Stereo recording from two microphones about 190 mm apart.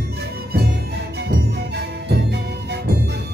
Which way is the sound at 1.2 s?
60° right (ahead or behind).